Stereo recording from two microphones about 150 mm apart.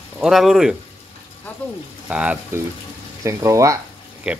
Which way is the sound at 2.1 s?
10° right (ahead or behind).